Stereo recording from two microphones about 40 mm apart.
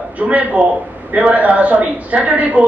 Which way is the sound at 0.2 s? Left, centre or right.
Right.